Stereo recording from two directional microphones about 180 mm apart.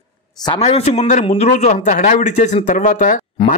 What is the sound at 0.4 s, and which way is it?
A man's voice, 30° left (ahead or behind).